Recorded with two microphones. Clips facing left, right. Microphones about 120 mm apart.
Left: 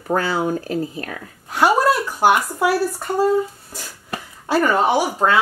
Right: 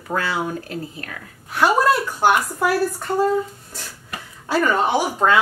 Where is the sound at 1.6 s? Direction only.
10° left (ahead or behind).